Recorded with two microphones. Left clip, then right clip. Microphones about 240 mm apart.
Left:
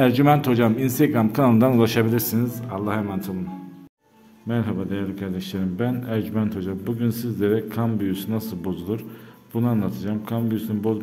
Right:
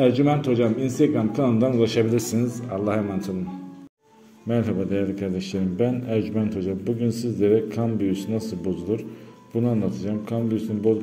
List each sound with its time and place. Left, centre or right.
0.0 s a man's voice: left; by 3.3 s centre
4.5 s a man's voice: centre